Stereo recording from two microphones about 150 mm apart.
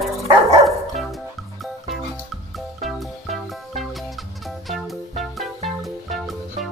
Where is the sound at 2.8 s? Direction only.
Centre (ahead or behind).